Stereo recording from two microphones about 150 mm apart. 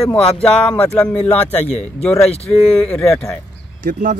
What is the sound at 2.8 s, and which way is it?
Speech, 5° left (ahead or behind).